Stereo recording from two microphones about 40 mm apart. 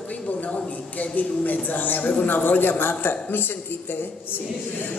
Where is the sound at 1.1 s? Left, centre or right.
Left.